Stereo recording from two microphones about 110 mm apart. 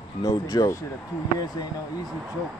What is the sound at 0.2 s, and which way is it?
Speech, 30° left (ahead or behind).